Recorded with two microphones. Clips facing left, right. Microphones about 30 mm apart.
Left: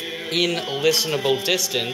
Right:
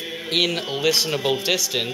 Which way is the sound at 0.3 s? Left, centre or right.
Centre.